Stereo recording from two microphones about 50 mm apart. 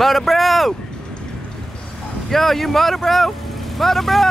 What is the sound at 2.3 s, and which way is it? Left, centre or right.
Speech, centre.